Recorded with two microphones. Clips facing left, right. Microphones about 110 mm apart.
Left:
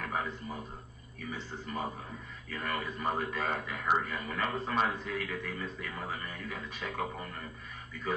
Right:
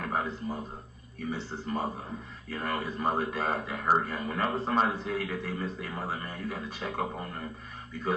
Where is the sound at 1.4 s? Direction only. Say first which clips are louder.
Right 4 dB; 90° right.